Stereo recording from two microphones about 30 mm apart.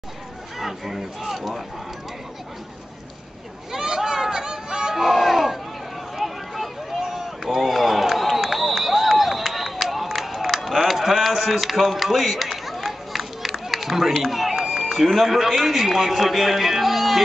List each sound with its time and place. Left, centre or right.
0.6 s speech: centre
3.7 s a sound: centre
4.9 s crowd: centre
6.1 s run: centre
10.1 s a sound: centre
14.2 s a man's voice: centre